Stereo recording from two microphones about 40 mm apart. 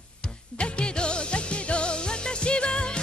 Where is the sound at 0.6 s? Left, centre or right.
Left.